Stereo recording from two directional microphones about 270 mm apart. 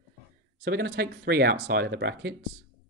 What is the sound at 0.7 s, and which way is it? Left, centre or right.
Speech, right.